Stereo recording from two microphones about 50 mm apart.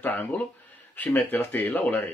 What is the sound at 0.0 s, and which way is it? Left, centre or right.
Speech, left.